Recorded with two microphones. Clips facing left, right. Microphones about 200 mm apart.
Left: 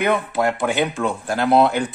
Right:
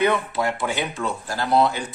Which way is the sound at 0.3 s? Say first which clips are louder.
Left 4 dB; 50° left (ahead or behind).